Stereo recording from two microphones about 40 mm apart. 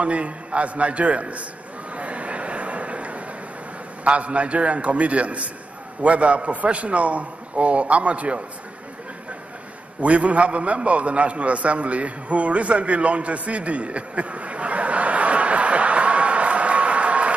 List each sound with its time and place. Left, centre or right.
0.0 s a man's voice: right
2.0 s a sound: right
4.0 s a man's voice: right
10.0 s a man's voice: right